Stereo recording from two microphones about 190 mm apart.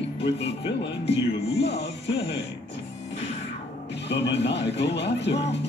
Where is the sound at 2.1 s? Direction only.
65° left (ahead or behind).